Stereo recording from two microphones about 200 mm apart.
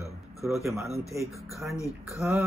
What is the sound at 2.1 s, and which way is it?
Speech, 5° right (ahead or behind).